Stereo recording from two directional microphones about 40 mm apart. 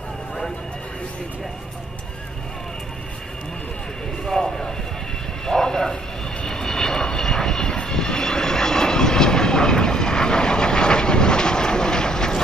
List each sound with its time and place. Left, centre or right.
4.3 s vehicle: centre